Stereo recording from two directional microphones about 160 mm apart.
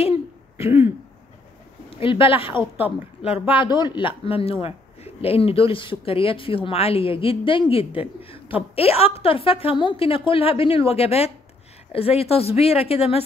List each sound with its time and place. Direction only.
0.7 s speech: 15° right (ahead or behind)
1.9 s speech: 35° left (ahead or behind)